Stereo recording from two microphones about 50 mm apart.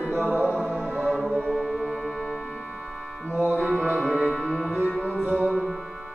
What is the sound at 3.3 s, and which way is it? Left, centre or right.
Music, right.